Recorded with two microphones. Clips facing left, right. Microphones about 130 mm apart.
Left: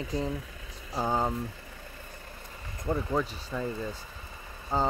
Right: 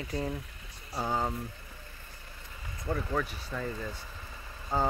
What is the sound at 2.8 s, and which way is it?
Speech, 20° left (ahead or behind).